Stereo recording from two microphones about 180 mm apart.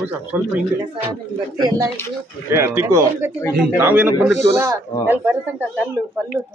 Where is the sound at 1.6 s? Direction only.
20° right (ahead or behind).